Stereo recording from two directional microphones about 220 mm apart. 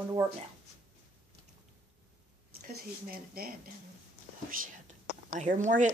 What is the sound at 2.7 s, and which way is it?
Speech, 45° right (ahead or behind).